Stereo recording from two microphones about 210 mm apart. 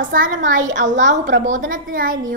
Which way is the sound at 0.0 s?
40° right (ahead or behind).